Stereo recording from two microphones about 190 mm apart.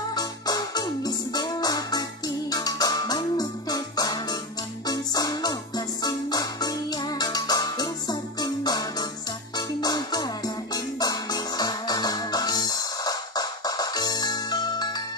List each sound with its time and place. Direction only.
0.1 s music: 20° left (ahead or behind)